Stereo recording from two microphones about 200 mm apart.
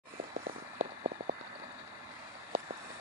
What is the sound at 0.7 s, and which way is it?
Vehicle, 40° right (ahead or behind).